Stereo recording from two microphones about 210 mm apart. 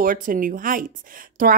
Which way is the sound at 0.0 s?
40° right (ahead or behind).